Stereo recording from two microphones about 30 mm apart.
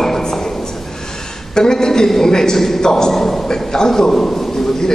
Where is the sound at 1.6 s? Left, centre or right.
Left.